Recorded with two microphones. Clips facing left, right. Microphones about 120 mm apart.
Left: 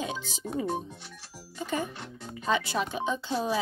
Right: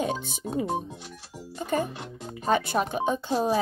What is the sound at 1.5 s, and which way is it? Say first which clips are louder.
Speech: right 4 dB; 50° right (ahead or behind).